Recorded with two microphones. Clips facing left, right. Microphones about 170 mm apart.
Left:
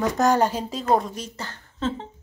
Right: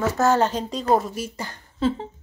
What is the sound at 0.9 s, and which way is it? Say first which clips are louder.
A woman's voice: right 1 dB; 5° right (ahead or behind).